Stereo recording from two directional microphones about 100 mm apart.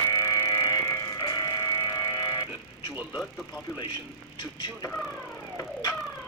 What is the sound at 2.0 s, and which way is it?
Music, 50° left (ahead or behind).